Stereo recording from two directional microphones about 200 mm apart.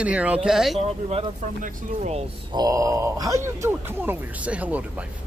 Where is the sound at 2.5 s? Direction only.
20° right (ahead or behind).